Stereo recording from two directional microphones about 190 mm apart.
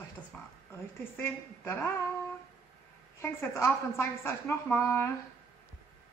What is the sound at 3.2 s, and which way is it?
A woman's voice, 15° left (ahead or behind).